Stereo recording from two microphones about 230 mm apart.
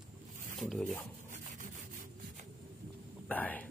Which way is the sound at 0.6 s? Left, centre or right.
Centre.